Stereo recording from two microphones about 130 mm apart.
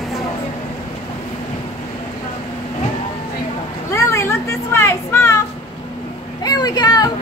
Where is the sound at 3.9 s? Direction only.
20° left (ahead or behind).